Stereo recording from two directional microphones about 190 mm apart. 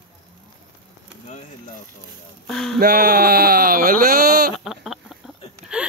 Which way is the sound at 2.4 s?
Centre (ahead or behind).